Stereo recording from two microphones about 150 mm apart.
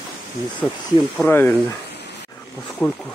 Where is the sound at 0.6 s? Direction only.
10° left (ahead or behind).